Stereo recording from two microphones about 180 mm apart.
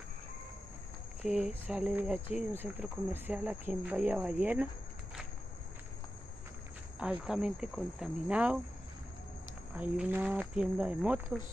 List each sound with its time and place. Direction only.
1.2 s speech: 5° right (ahead or behind)
7.0 s speech: 5° right (ahead or behind)
9.8 s speech: 10° right (ahead or behind)